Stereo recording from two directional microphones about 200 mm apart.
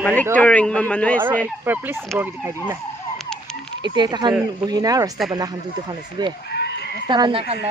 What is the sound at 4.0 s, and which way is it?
Speech, 20° right (ahead or behind).